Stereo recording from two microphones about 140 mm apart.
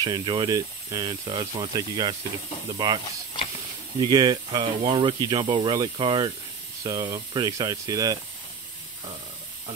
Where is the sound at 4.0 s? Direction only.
30° right (ahead or behind).